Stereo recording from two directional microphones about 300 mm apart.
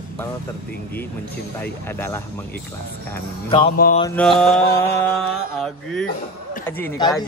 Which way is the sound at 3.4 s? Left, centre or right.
Centre.